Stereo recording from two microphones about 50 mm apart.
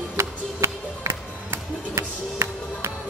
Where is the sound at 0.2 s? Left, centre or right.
Right.